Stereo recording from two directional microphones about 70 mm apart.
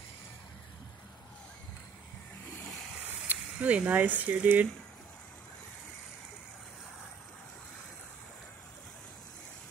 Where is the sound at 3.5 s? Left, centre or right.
Right.